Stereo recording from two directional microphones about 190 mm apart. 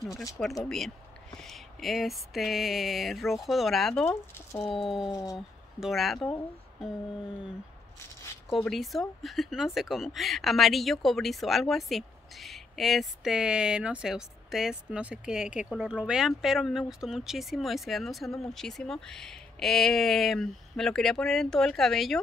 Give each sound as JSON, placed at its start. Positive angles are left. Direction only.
{"t": 0.7, "sound": "speech", "side_deg": 0}
{"t": 5.1, "sound": "a sound", "side_deg": 20}
{"t": 5.8, "sound": "speech", "side_deg": 0}
{"t": 8.5, "sound": "speech", "side_deg": 0}